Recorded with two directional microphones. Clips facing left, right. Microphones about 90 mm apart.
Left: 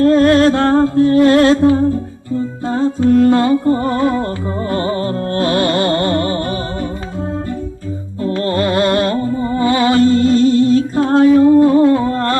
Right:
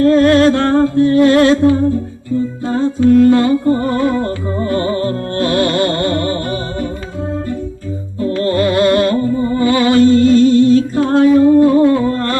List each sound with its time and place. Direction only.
0.0 s music: 30° left (ahead or behind)
8.3 s music: 30° left (ahead or behind)